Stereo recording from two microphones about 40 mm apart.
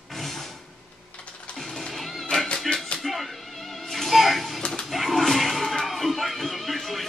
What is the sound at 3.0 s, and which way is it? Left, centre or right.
Music, centre.